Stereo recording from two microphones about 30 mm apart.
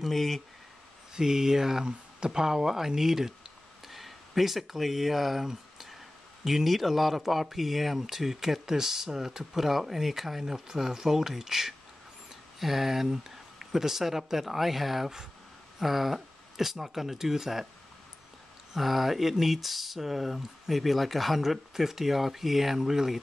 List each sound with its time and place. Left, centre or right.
0.0 s speech: centre
1.1 s speech: centre
1.9 s speech: right
18.8 s speech: centre